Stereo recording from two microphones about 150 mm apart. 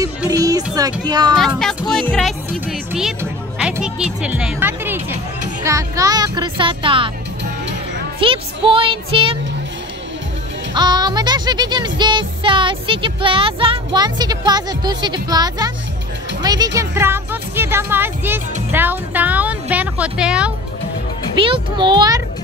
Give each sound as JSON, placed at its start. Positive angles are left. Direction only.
{"t": 0.3, "sound": "speech", "side_deg": -25}
{"t": 1.0, "sound": "music", "side_deg": -30}
{"t": 1.9, "sound": "speech", "side_deg": 5}
{"t": 5.6, "sound": "music", "side_deg": -20}
{"t": 8.2, "sound": "speech", "side_deg": -35}
{"t": 10.7, "sound": "music", "side_deg": -30}
{"t": 16.4, "sound": "a woman's voice", "side_deg": -25}
{"t": 21.4, "sound": "speech", "side_deg": -35}